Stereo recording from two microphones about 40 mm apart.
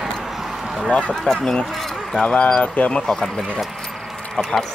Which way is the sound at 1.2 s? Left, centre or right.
Centre.